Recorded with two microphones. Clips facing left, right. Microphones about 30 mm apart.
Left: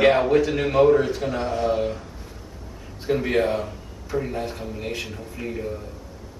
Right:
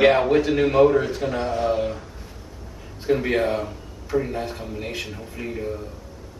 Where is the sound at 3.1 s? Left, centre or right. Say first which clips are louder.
Right 1 dB; centre.